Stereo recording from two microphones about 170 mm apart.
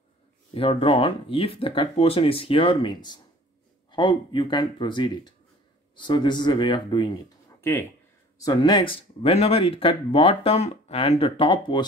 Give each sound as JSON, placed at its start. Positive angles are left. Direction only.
{"t": 0.6, "sound": "speech", "side_deg": 35}
{"t": 7.6, "sound": "speech", "side_deg": 15}